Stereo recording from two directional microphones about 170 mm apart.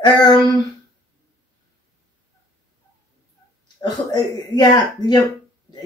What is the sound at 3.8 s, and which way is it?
Speech, 25° left (ahead or behind).